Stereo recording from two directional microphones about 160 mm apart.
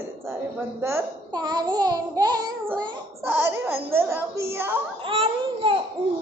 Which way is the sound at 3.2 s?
10° right (ahead or behind).